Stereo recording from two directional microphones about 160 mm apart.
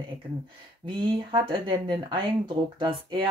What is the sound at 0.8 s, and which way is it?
Speech, 30° right (ahead or behind).